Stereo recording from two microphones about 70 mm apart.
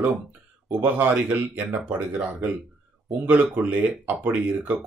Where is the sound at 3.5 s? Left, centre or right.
Right.